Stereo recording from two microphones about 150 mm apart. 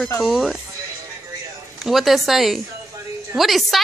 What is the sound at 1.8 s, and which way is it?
A woman's voice, centre (ahead or behind).